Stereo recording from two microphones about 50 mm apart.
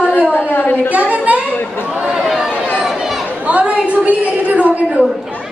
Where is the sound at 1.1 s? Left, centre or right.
Right.